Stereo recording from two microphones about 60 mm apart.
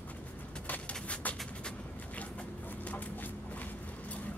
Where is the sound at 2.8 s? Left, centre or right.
Left.